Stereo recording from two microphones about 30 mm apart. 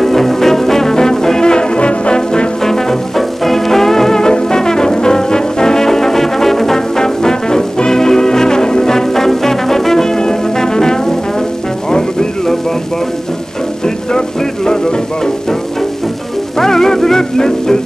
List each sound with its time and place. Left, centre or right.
0.0 s music: centre; by 2.4 s left
2.6 s music: centre
5.9 s brass instrument: centre
11.9 s music: left
16.5 s music: centre